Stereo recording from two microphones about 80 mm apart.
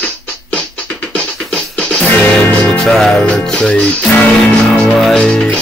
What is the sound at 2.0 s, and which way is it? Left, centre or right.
Music, left.